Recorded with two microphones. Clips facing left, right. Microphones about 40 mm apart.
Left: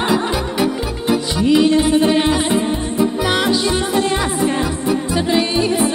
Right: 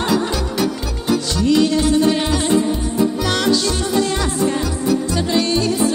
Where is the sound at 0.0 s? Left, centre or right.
Left.